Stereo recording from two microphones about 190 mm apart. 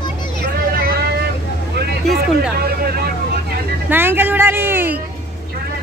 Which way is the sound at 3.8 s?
10° right (ahead or behind).